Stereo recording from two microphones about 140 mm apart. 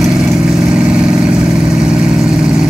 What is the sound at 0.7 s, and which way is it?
Vehicle, 5° right (ahead or behind).